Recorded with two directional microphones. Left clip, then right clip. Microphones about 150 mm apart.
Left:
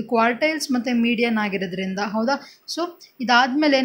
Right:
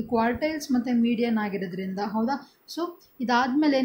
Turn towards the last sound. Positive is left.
turn(degrees=15)  # may be behind; listen again after turning